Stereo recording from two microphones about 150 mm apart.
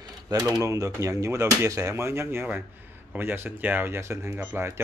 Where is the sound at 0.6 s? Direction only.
20° right (ahead or behind).